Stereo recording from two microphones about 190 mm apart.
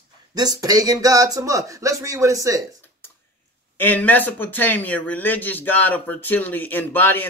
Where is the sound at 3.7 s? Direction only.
10° left (ahead or behind).